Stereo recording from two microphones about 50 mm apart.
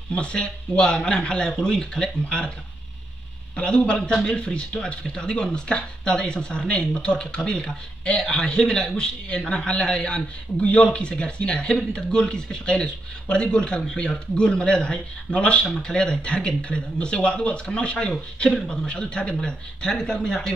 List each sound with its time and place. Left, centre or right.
0.1 s a man's voice: left
3.5 s a man's voice: left
9.7 s a man's voice: left